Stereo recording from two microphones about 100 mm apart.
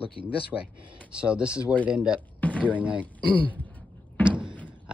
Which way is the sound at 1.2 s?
10° right (ahead or behind).